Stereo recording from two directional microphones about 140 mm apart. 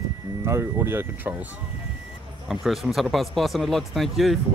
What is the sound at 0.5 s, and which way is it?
Speech, 15° right (ahead or behind).